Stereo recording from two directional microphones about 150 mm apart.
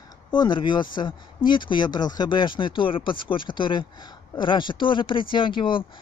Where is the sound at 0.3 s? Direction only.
30° left (ahead or behind).